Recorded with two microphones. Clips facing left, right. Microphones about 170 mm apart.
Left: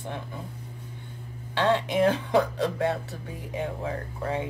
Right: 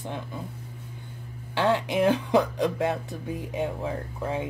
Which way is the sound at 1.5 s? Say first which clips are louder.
Even; 15° right (ahead or behind).